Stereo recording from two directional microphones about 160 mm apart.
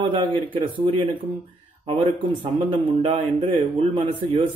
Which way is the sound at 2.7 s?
30° right (ahead or behind).